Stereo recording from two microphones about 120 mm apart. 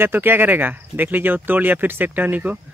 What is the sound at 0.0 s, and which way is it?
Speech, 15° right (ahead or behind).